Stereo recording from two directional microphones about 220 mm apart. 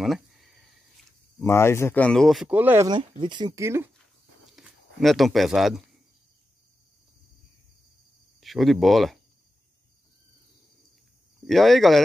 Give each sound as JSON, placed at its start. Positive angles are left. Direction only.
{"t": 0.0, "sound": "a sound", "side_deg": 0}
{"t": 1.4, "sound": "speech", "side_deg": 10}
{"t": 4.6, "sound": "speech", "side_deg": 0}
{"t": 8.4, "sound": "speech", "side_deg": 0}
{"t": 11.4, "sound": "speech", "side_deg": 0}